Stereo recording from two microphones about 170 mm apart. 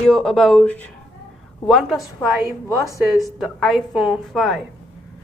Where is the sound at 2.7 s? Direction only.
20° right (ahead or behind).